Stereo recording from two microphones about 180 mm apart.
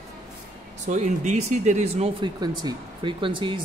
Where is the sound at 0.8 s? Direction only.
40° right (ahead or behind).